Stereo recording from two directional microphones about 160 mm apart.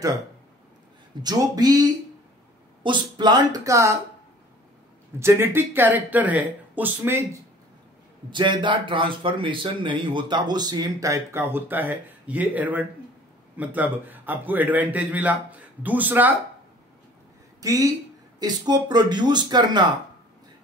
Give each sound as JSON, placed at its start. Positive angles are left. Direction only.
{"t": 1.2, "sound": "speech", "side_deg": -25}
{"t": 5.2, "sound": "a man's voice", "side_deg": -15}
{"t": 8.3, "sound": "a man's voice", "side_deg": -30}
{"t": 17.6, "sound": "speech", "side_deg": -20}